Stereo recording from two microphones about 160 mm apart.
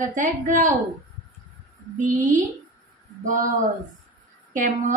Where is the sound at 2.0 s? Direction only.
50° right (ahead or behind).